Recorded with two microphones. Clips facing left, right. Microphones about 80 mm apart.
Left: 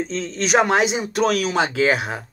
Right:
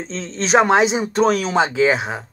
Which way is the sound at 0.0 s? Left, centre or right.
Right.